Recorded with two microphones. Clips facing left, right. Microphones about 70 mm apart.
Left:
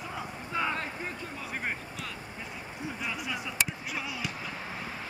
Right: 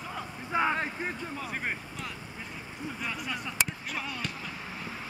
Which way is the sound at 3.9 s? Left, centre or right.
Centre.